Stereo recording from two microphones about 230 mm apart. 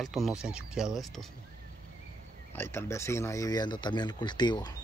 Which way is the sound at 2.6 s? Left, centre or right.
Centre.